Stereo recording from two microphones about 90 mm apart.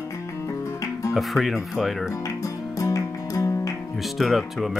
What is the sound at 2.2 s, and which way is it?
Music, 40° left (ahead or behind).